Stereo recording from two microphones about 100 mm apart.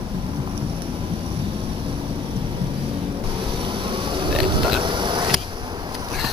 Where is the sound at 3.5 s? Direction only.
55° right (ahead or behind).